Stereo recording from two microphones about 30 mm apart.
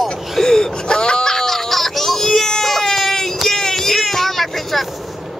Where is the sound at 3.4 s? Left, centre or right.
Centre.